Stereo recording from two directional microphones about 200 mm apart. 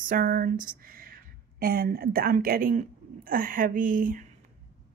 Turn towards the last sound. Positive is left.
turn(degrees=-45)  # may be behind; listen again after turning